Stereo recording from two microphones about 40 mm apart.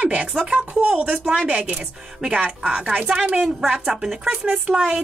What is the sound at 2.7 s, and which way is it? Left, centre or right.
Speech, right.